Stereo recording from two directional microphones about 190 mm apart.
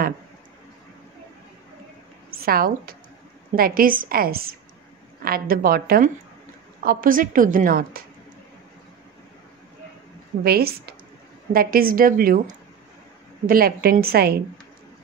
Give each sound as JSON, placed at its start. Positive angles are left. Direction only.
{"t": 2.3, "sound": "a woman's voice", "side_deg": -50}
{"t": 10.4, "sound": "a woman's voice", "side_deg": -55}
{"t": 13.5, "sound": "a woman's voice", "side_deg": -50}